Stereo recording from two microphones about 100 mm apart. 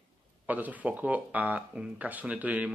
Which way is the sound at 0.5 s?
15° right (ahead or behind).